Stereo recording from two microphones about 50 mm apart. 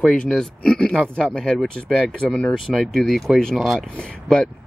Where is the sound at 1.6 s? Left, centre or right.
Centre.